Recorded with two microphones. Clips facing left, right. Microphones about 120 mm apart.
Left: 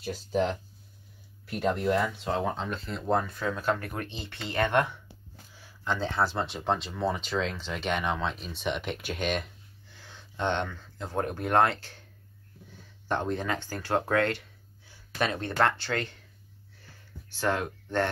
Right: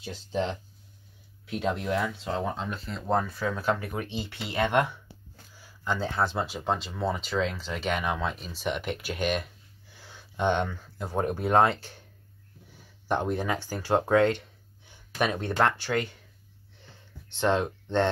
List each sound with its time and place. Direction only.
0.0 s speech: 5° left (ahead or behind)
9.8 s speech: 15° right (ahead or behind)
13.1 s speech: 15° right (ahead or behind)
16.7 s a sound: 20° right (ahead or behind)